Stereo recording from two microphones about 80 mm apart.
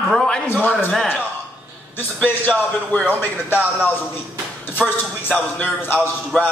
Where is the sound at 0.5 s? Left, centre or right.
Centre.